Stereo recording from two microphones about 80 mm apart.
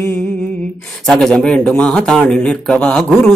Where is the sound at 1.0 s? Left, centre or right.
Centre.